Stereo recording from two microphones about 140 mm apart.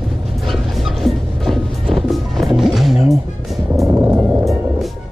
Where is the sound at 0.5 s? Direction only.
Centre (ahead or behind).